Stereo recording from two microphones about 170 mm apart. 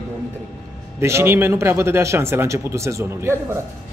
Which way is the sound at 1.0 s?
15° right (ahead or behind).